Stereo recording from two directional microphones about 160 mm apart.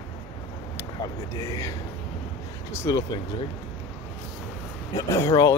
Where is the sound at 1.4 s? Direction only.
20° left (ahead or behind).